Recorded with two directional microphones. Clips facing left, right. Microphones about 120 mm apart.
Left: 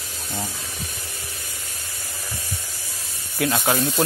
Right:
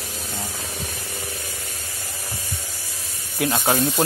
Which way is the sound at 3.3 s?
20° right (ahead or behind).